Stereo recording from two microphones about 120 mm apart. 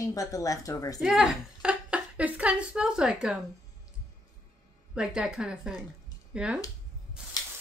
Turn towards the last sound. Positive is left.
turn(degrees=-10)  # may be behind; listen again after turning